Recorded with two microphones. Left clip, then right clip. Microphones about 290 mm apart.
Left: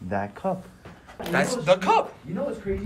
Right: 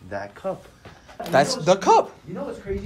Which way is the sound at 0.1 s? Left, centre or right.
Centre.